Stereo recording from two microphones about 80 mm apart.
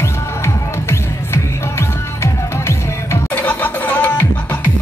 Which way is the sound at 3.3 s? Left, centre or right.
Left.